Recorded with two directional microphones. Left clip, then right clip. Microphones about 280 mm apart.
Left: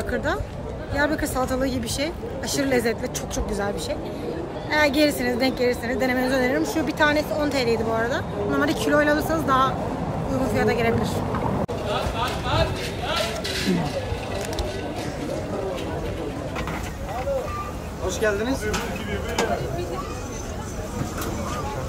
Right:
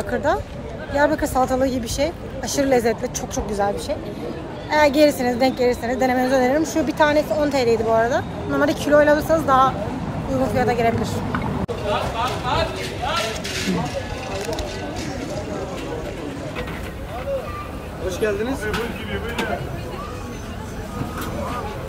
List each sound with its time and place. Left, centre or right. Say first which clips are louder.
0.1 s a woman's voice: right 6 dB; centre
11.9 s a sound: right 5 dB; right
18.2 s a woman's voice: right 1 dB; centre